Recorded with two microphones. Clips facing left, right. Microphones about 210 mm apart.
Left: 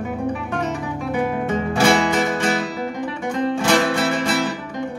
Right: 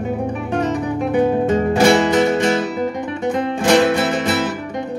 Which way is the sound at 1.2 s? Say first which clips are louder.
Right 6 dB; 25° right (ahead or behind).